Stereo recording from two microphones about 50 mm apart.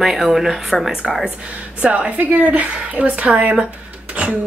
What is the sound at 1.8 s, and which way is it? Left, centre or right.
A woman's voice, right.